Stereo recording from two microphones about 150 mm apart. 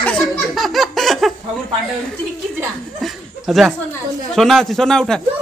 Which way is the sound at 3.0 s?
Centre (ahead or behind).